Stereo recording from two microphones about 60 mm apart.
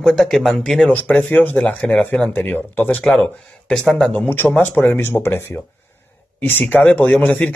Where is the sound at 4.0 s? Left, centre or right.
Left.